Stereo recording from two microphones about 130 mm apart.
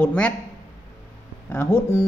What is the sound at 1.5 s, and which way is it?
Speech, 20° left (ahead or behind).